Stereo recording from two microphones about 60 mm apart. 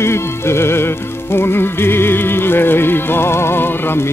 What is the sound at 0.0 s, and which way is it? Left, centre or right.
Music, left.